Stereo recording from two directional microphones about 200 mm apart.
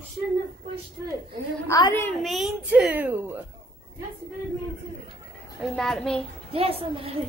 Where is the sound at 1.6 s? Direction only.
15° left (ahead or behind).